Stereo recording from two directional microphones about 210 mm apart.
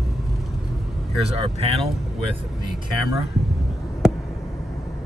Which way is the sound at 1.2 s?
30° right (ahead or behind).